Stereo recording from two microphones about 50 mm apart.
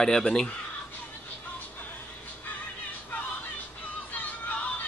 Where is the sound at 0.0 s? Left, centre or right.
Centre.